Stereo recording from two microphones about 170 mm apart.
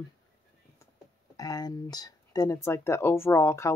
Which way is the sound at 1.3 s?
20° left (ahead or behind).